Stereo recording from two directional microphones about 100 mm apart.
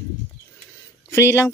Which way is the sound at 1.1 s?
25° left (ahead or behind).